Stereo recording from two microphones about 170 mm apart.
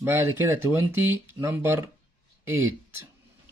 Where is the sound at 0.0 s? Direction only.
15° right (ahead or behind).